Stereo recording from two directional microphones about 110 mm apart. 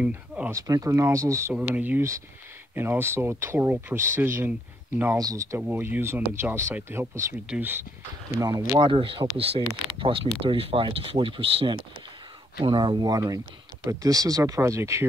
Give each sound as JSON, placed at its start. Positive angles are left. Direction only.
{"t": 0.5, "sound": "speech", "side_deg": -35}
{"t": 1.5, "sound": "speech", "side_deg": -10}
{"t": 5.1, "sound": "speech", "side_deg": -30}
{"t": 7.4, "sound": "speech", "side_deg": -15}
{"t": 8.4, "sound": "speech", "side_deg": -30}
{"t": 8.7, "sound": "speech", "side_deg": -50}